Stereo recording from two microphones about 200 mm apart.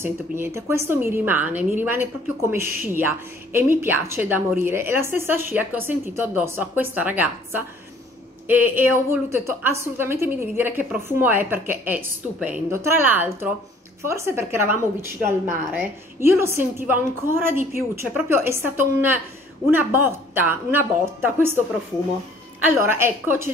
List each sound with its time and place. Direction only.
0.0 s a woman's voice: 15° right (ahead or behind)
22.8 s a woman's voice: 10° right (ahead or behind)